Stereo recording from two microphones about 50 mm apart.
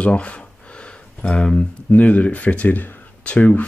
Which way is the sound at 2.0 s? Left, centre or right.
Left.